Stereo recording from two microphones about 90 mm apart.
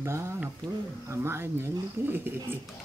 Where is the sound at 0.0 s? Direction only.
30° right (ahead or behind).